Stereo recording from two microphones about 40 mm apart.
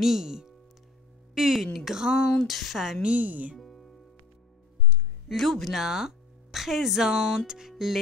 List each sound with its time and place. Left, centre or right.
0.0 s speech: centre
2.4 s speech: centre
3.0 s speech: right
3.3 s speech: right
3.5 s music: centre
5.3 s speech: centre
5.8 s speech: centre